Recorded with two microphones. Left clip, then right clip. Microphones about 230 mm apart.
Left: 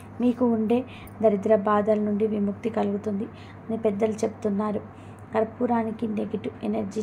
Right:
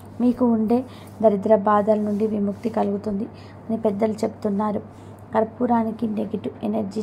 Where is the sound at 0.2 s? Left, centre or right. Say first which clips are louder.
Right 3 dB; centre.